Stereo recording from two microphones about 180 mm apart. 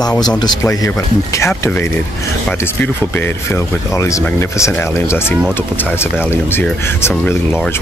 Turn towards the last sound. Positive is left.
turn(degrees=10)  # may be behind; listen again after turning